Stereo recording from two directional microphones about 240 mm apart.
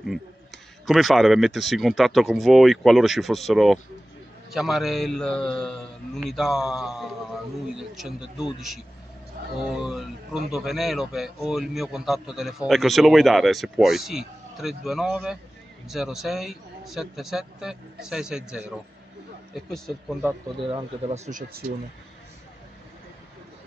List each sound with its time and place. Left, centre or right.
0.8 s a man's voice: centre
20.5 s speech: right
21.3 s speech: right